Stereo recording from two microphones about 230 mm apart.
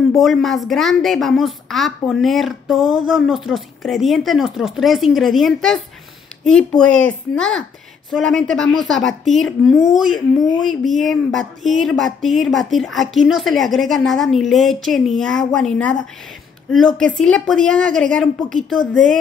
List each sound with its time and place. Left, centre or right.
0.2 s a woman's voice: centre